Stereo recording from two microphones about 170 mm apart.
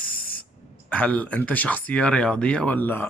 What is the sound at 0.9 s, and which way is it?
Speech, 10° left (ahead or behind).